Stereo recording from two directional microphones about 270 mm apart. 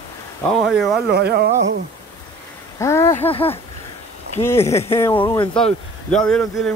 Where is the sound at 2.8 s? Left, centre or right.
Centre.